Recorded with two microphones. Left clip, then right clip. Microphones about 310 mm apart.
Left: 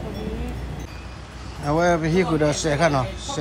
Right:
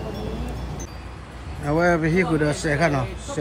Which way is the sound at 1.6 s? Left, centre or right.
Centre.